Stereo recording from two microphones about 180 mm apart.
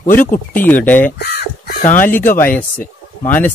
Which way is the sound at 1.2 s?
60° left (ahead or behind).